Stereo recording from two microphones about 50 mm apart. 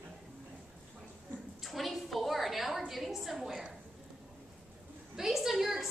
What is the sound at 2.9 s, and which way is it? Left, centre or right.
Speech, centre.